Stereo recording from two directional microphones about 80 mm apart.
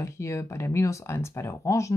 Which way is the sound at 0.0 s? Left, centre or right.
Left.